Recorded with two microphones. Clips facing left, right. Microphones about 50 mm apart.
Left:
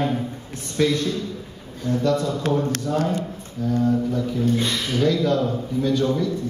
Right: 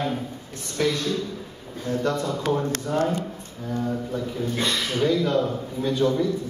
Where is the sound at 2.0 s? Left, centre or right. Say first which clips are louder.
Left 4 dB; right.